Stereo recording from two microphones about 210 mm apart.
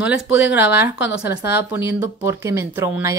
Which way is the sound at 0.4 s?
10° right (ahead or behind).